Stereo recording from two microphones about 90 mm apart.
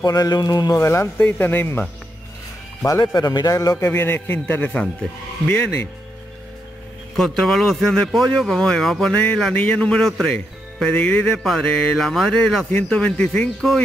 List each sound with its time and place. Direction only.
0.0 s speech: 45° left (ahead or behind)
0.7 s a man's voice: 30° left (ahead or behind)
1.2 s a man's voice: 20° left (ahead or behind)
3.2 s a man's voice: 45° left (ahead or behind)
3.7 s a man's voice: 25° left (ahead or behind)
7.2 s speech: centre (ahead or behind)
9.1 s speech: 15° left (ahead or behind)
13.6 s speech: centre (ahead or behind)